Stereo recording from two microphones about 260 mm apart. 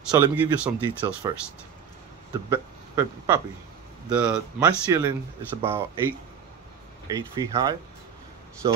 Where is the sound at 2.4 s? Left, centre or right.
Centre.